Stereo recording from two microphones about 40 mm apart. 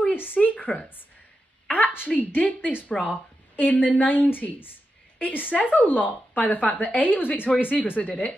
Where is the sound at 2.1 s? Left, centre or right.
Left.